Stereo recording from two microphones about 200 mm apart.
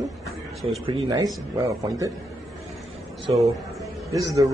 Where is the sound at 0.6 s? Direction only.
25° right (ahead or behind).